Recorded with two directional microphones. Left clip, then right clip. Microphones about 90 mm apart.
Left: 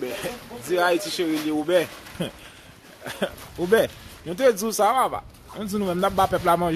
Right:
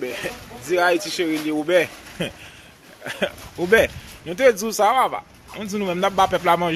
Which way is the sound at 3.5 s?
Centre (ahead or behind).